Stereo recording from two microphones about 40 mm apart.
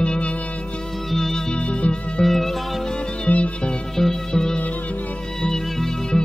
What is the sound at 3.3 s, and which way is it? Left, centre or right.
Music, left.